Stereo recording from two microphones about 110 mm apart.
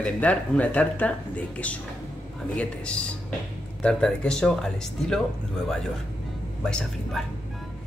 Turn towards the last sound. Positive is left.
turn(degrees=5)  # may be behind; listen again after turning